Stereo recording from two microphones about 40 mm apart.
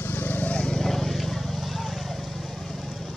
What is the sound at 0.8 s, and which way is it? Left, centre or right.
Vehicle, centre.